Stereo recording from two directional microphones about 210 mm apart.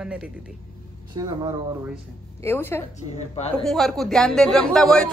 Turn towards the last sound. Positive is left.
turn(degrees=0)  # may be behind; listen again after turning